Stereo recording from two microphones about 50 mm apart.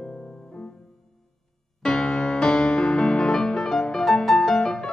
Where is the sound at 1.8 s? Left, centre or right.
Centre.